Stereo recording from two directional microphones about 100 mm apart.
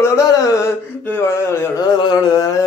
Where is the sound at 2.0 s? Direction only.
45° left (ahead or behind).